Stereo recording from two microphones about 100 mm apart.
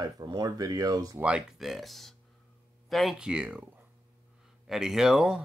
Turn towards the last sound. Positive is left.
turn(degrees=-5)  # may be behind; listen again after turning